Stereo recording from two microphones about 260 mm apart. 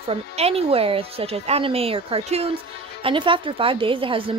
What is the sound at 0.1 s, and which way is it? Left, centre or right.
A woman's voice, right.